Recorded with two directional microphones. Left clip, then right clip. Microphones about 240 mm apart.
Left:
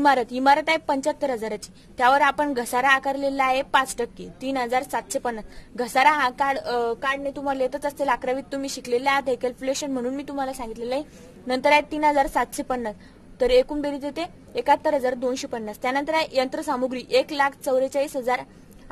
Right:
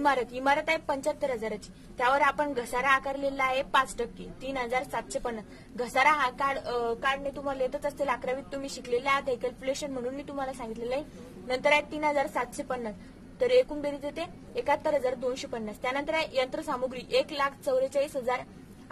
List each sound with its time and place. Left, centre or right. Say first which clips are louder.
0.0 s a woman's voice: left 7 dB; left